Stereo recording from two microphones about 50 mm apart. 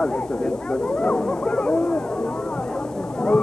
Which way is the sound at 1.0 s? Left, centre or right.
Left.